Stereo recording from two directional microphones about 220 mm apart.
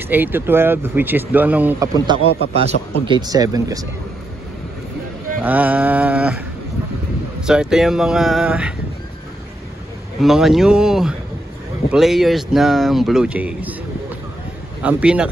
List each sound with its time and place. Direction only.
0.0 s speech: 10° right (ahead or behind)
5.4 s a sound: 5° right (ahead or behind)
7.4 s speech: 5° right (ahead or behind)
10.2 s speech: centre (ahead or behind)
14.8 s speech: 5° right (ahead or behind)